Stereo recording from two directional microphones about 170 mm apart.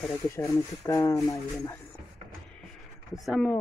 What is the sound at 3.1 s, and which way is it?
Speech, centre (ahead or behind).